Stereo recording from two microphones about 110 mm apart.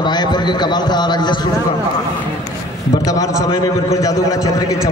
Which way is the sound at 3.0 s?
35° left (ahead or behind).